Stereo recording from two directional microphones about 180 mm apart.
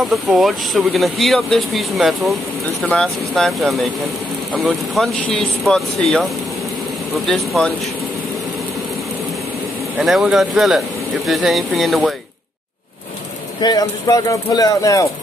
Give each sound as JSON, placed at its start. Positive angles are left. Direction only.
{"t": 0.0, "sound": "speech", "side_deg": 0}
{"t": 9.9, "sound": "speech", "side_deg": 0}
{"t": 13.6, "sound": "speech", "side_deg": 20}